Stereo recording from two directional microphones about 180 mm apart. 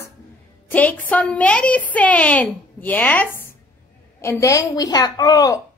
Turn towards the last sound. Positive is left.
turn(degrees=20)  # may be behind; listen again after turning